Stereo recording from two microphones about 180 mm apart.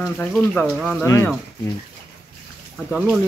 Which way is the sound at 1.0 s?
20° left (ahead or behind).